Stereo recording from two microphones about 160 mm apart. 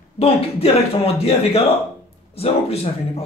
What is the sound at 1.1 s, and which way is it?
A man's voice, 40° left (ahead or behind).